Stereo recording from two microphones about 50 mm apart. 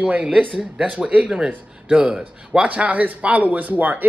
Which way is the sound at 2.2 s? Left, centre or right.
Right.